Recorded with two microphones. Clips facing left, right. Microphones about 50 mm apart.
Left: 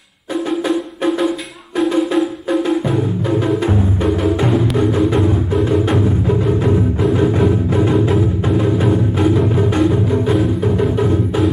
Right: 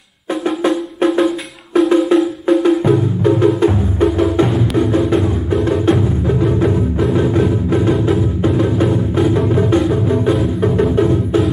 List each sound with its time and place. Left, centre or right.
0.7 s music: centre